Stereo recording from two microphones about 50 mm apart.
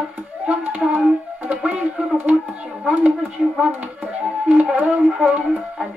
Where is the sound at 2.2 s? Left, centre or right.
Right.